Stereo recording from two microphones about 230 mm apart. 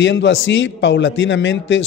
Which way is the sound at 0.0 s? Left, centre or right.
Left.